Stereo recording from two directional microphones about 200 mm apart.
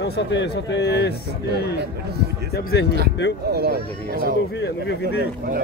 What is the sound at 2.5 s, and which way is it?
Speech, 50° left (ahead or behind).